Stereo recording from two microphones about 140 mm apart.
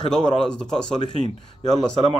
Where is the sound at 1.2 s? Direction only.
50° right (ahead or behind).